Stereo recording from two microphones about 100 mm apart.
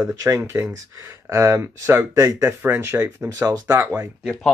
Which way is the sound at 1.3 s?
30° right (ahead or behind).